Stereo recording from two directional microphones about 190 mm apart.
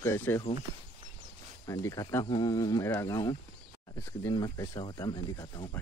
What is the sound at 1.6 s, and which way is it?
Speech, 15° left (ahead or behind).